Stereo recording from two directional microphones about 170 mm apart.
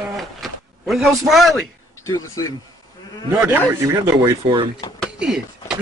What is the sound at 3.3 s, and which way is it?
Speech, 15° right (ahead or behind).